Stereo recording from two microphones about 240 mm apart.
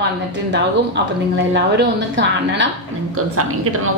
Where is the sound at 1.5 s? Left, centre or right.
Right.